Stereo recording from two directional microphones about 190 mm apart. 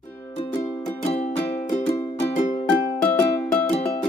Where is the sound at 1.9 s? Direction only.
15° left (ahead or behind).